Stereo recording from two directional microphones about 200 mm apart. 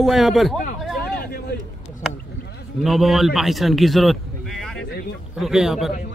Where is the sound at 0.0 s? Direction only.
Centre (ahead or behind).